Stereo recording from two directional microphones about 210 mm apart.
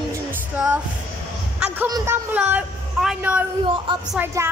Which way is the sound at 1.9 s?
10° right (ahead or behind).